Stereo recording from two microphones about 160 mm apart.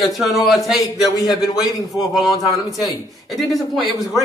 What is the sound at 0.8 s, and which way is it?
Speech, 25° left (ahead or behind).